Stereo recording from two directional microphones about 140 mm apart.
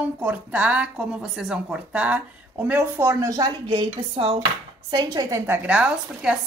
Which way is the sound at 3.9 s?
40° right (ahead or behind).